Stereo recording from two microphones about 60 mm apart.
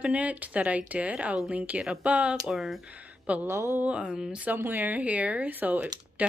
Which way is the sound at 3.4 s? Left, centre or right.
Right.